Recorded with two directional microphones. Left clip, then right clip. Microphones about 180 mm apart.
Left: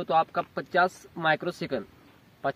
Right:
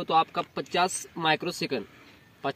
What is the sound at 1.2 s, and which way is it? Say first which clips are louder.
Speech: even; 30° left (ahead or behind).